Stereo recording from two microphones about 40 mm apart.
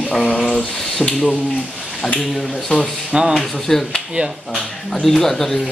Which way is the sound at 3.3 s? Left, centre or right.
Centre.